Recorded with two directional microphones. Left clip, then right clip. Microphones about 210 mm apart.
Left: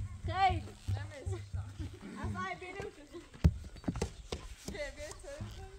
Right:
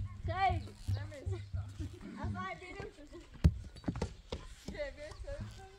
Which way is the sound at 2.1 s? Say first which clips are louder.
Left 2 dB; 55° left (ahead or behind).